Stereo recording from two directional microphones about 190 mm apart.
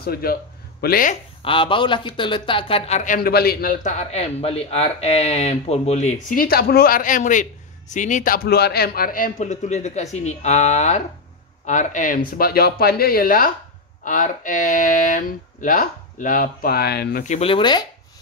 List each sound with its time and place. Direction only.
0.0 s speech: 55° left (ahead or behind)
1.4 s speech: 25° left (ahead or behind)